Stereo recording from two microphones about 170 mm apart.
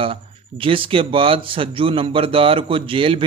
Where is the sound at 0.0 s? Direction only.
30° right (ahead or behind).